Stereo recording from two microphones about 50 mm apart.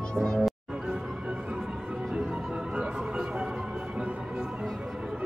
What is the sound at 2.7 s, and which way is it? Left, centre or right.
Music, right.